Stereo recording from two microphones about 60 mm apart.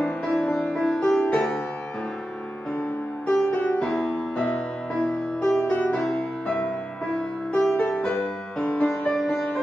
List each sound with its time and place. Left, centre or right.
0.0 s music: centre
3.3 s music: centre
3.9 s music: centre
9.2 s music: centre